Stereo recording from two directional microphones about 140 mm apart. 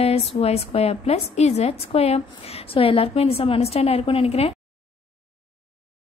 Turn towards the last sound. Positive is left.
turn(degrees=45)  # may be behind; listen again after turning